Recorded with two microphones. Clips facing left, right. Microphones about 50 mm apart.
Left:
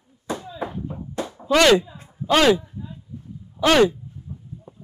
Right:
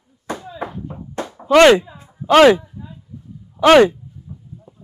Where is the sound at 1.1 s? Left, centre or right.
Right.